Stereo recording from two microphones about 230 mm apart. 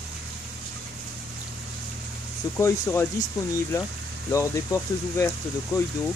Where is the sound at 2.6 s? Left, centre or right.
Centre.